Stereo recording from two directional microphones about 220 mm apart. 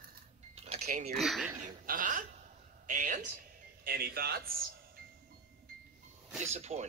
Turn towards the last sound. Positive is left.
turn(degrees=-30)  # may be behind; listen again after turning